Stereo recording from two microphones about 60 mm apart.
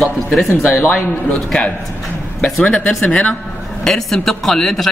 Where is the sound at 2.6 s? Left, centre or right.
Left.